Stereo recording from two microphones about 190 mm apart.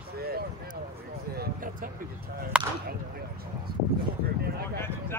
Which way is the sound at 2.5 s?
5° right (ahead or behind).